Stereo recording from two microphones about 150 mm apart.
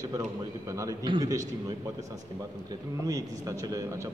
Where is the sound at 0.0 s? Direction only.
20° right (ahead or behind).